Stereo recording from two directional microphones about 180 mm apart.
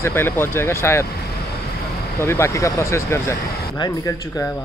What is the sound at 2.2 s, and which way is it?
Speech, 15° left (ahead or behind).